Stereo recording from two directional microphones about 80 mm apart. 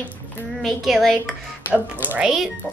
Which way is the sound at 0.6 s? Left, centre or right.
Centre.